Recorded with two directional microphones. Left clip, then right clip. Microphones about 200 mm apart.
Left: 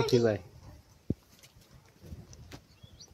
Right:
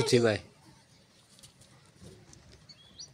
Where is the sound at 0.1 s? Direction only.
5° right (ahead or behind).